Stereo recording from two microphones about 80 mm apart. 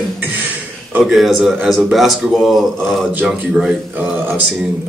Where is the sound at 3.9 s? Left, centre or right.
Right.